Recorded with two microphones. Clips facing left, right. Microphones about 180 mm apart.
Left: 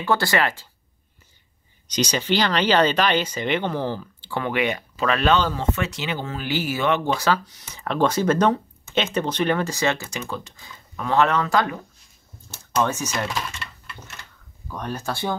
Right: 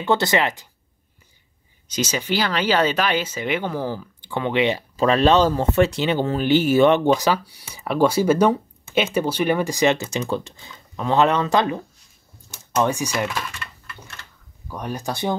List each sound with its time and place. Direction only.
0.0 s speech: 20° right (ahead or behind)
1.9 s speech: 5° right (ahead or behind); by 7.2 s 30° right (ahead or behind)
7.2 s speech: 15° right (ahead or behind)
14.7 s speech: 10° right (ahead or behind)